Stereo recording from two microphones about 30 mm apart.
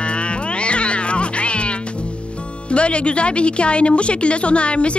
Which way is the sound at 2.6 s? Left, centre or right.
Left.